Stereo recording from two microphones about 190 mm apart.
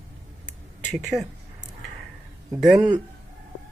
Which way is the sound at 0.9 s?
Centre (ahead or behind).